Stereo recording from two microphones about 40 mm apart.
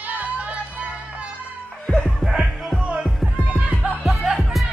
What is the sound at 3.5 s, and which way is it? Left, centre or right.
Music, right.